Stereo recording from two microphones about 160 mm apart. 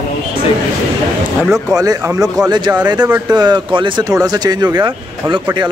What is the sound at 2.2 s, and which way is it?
Speech, centre (ahead or behind).